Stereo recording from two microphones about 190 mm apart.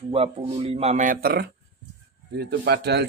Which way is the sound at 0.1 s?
30° right (ahead or behind).